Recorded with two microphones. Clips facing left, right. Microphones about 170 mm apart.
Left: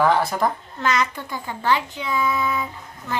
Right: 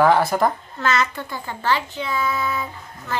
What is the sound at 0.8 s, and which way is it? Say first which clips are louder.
A child's voice: right 1 dB; 15° left (ahead or behind).